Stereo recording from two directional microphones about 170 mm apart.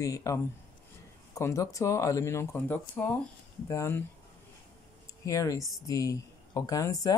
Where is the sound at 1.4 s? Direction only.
20° left (ahead or behind).